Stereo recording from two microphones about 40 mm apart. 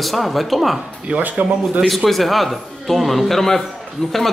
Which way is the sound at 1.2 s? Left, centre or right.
Right.